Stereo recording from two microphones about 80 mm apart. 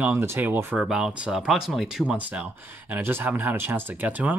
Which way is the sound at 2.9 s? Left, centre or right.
Right.